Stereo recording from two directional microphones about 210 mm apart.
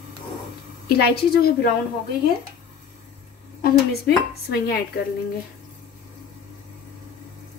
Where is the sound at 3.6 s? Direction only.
45° left (ahead or behind).